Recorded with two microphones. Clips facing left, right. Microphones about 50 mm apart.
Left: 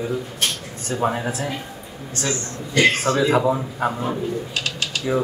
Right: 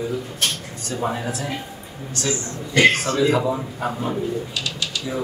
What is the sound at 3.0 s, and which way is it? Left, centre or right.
Speech, left.